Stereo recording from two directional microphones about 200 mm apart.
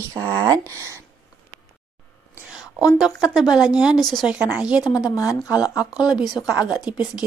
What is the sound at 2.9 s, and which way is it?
Speech, centre (ahead or behind).